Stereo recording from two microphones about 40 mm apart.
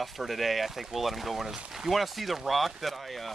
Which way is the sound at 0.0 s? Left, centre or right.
Centre.